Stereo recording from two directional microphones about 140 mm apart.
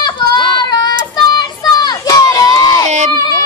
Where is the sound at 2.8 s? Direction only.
55° right (ahead or behind).